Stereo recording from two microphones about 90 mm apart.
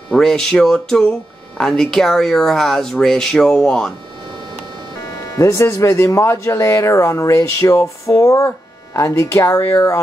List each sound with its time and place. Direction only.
0.1 s speech: 5° left (ahead or behind)
5.3 s speech: 35° left (ahead or behind)